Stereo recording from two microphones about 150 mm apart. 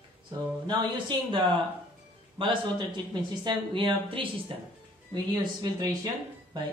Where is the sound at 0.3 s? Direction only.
30° right (ahead or behind).